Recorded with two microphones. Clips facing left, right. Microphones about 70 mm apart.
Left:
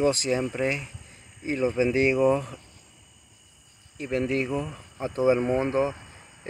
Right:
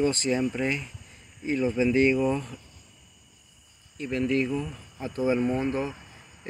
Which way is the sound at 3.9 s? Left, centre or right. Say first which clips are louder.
Even; centre.